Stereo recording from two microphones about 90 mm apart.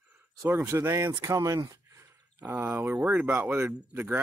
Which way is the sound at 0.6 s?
35° right (ahead or behind).